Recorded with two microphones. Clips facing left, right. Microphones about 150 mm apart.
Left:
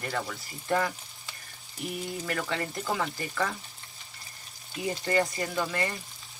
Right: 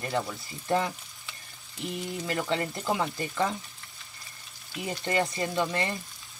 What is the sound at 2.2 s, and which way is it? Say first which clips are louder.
Speech: right 4 dB; 25° right (ahead or behind).